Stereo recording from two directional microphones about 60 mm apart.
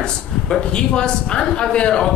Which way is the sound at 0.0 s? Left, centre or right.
Centre.